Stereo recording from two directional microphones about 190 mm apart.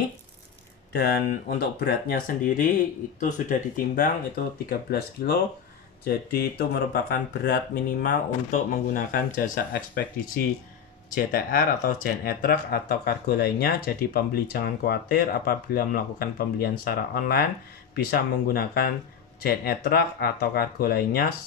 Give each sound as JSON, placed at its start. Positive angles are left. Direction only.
{"t": 0.9, "sound": "speech", "side_deg": 60}